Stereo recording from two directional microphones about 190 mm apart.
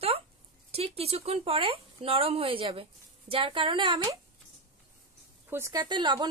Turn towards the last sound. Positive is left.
turn(degrees=-25)  # may be behind; listen again after turning